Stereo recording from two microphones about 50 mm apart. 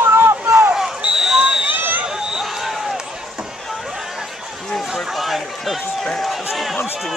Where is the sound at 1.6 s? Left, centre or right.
Right.